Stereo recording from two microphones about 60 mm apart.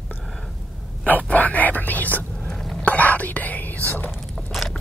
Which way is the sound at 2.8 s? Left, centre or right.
Left.